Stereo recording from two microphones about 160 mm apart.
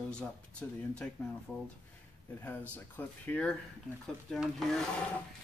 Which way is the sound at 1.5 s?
10° left (ahead or behind).